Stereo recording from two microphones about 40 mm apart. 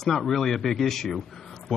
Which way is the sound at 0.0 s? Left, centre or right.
Centre.